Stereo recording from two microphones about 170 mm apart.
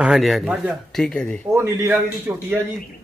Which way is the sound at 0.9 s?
5° left (ahead or behind).